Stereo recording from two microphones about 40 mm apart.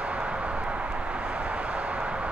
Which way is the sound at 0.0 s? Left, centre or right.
Right.